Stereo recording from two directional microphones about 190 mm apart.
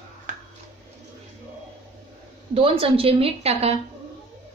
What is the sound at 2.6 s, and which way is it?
A woman's voice, 30° right (ahead or behind).